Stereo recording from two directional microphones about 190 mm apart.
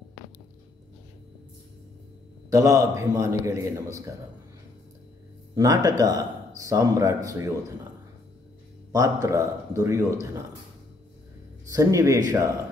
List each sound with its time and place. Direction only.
2.5 s speech: 15° right (ahead or behind)
5.5 s speech: 20° right (ahead or behind)
8.9 s speech: 15° right (ahead or behind)
11.7 s speech: 20° right (ahead or behind)